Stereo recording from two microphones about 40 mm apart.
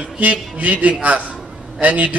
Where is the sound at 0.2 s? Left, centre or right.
Right.